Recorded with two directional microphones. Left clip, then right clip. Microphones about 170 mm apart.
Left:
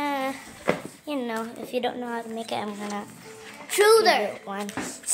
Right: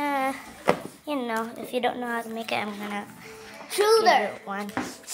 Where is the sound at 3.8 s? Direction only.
75° left (ahead or behind).